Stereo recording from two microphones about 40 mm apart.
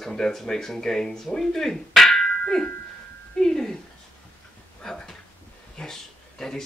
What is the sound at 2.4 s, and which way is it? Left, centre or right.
Music, left.